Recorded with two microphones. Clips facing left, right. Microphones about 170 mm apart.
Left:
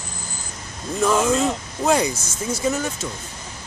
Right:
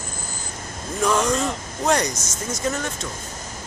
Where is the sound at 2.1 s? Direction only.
30° left (ahead or behind).